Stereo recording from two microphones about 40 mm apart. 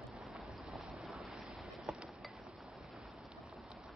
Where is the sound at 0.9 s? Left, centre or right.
Centre.